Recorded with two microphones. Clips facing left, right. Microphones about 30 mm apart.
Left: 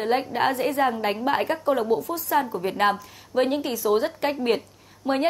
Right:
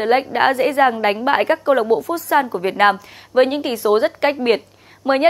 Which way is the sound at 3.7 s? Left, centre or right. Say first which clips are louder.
Right 6 dB; right.